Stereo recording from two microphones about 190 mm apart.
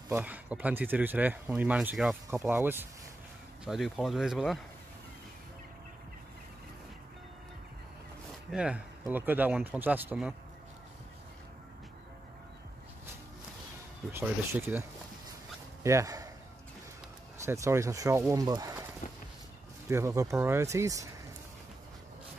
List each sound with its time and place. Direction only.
0.1 s speech: 10° right (ahead or behind)
8.5 s speech: 5° right (ahead or behind)
14.1 s speech: 10° right (ahead or behind)
17.5 s speech: 15° right (ahead or behind)
19.9 s speech: 15° right (ahead or behind)